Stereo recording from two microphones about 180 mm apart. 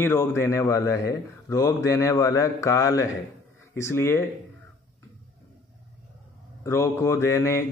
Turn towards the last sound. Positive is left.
turn(degrees=15)  # may be behind; listen again after turning